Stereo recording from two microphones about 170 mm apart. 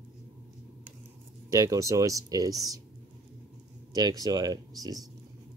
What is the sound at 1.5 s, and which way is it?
Speech, 20° right (ahead or behind).